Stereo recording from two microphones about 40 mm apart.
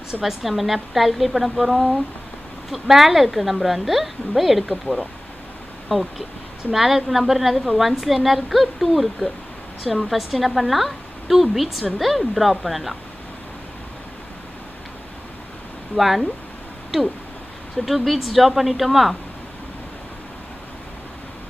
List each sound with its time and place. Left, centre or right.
0.1 s a woman's voice: centre
4.9 s speech: left
5.9 s a woman's voice: centre
16.0 s a woman's voice: centre